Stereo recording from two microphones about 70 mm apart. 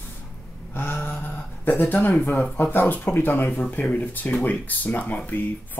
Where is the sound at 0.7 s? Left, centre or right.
Left.